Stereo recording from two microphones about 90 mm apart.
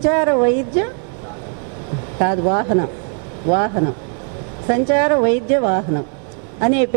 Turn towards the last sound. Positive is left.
turn(degrees=-15)  # may be behind; listen again after turning